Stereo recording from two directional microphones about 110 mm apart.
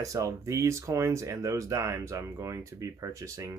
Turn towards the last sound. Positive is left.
turn(degrees=-30)  # may be behind; listen again after turning